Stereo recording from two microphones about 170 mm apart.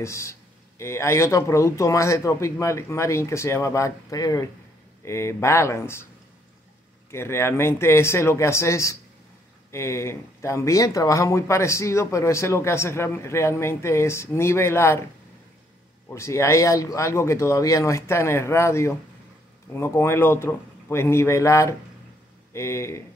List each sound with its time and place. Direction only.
0.0 s speech: 15° left (ahead or behind)
7.1 s speech: 15° left (ahead or behind)
16.1 s speech: 15° left (ahead or behind)